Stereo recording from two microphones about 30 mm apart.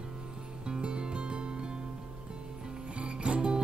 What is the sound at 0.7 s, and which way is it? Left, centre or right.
Music, right.